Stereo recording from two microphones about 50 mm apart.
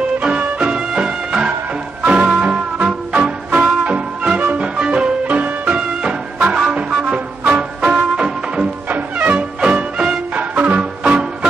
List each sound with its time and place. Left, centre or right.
0.6 s music: centre
6.0 s music: centre
8.8 s music: right